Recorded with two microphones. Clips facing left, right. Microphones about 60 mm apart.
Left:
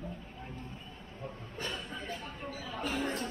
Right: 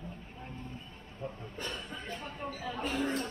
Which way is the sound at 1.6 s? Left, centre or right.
Left.